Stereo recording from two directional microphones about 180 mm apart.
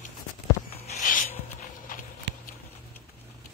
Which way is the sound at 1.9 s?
50° left (ahead or behind).